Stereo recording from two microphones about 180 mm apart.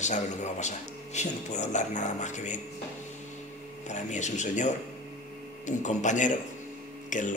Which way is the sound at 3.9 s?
40° left (ahead or behind).